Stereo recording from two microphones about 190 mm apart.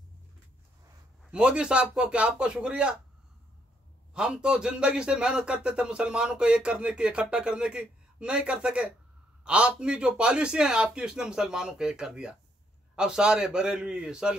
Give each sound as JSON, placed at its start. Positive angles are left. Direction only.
{"t": 1.3, "sound": "a man's voice", "side_deg": -5}
{"t": 4.1, "sound": "a man's voice", "side_deg": -5}